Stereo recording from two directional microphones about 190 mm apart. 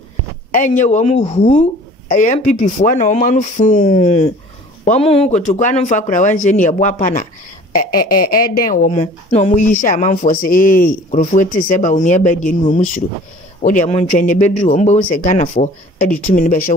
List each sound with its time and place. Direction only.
0.5 s speech: 40° left (ahead or behind)